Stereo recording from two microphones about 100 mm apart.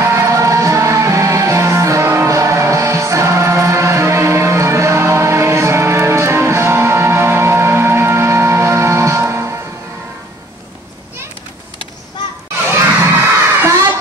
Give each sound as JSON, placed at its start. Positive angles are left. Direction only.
{"t": 0.0, "sound": "music", "side_deg": -30}
{"t": 12.7, "sound": "children shouting", "side_deg": -25}
{"t": 13.6, "sound": "a sound", "side_deg": -30}